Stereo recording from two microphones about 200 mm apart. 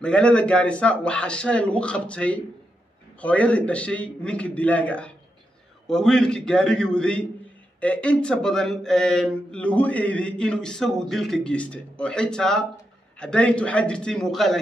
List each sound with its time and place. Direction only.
0.0 s a man's voice: 5° left (ahead or behind)